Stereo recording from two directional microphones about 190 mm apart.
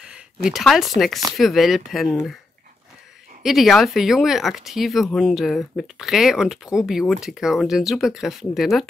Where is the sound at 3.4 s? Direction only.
Centre (ahead or behind).